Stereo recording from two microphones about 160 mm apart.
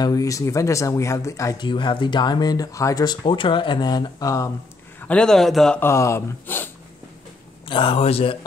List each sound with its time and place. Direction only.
0.0 s speech: 20° left (ahead or behind)
1.6 s speech: 30° left (ahead or behind)
5.0 s a man's voice: 5° left (ahead or behind)
5.8 s speech: 15° left (ahead or behind)
7.6 s a man's voice: 30° left (ahead or behind)